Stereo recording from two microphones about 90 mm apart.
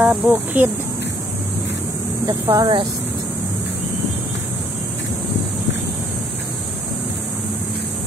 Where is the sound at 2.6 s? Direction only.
65° right (ahead or behind).